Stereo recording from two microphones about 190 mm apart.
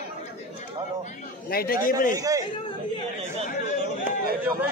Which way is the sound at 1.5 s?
50° left (ahead or behind).